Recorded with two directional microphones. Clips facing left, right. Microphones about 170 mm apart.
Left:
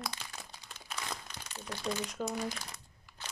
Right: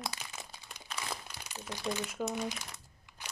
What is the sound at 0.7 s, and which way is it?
Crumpling, 10° right (ahead or behind).